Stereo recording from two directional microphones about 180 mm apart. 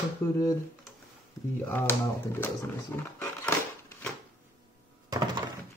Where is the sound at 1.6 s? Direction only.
10° left (ahead or behind).